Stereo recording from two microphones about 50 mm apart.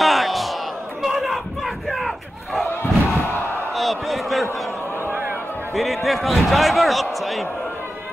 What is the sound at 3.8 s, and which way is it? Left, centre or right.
Basketball bounce, centre.